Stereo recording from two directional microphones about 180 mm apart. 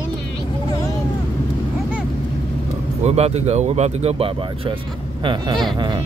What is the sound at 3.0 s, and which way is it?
Speech, 35° right (ahead or behind).